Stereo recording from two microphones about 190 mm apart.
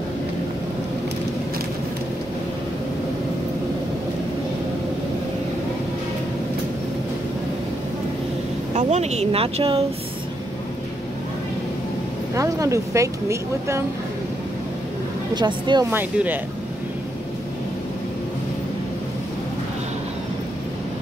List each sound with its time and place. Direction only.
8.7 s speech: 35° right (ahead or behind)
12.4 s speech: 15° right (ahead or behind)
15.3 s speech: 25° right (ahead or behind)
15.9 s speech: 10° right (ahead or behind)